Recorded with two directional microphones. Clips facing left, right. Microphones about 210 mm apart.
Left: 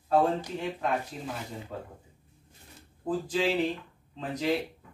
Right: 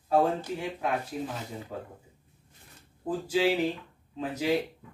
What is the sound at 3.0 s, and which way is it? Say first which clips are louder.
Speech: right 2 dB; 10° right (ahead or behind).